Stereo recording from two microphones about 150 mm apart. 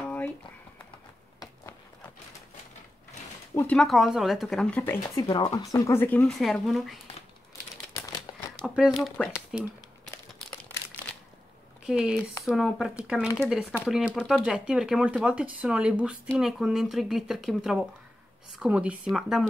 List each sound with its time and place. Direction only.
0.0 s a sound: 10° left (ahead or behind)
1.4 s run: 25° left (ahead or behind)
3.5 s speech: 5° left (ahead or behind)
5.2 s speech: 25° left (ahead or behind)
6.3 s speech: centre (ahead or behind)
8.3 s crumpling: 30° left (ahead or behind)
8.6 s speech: 5° right (ahead or behind)
11.8 s speech: 5° right (ahead or behind)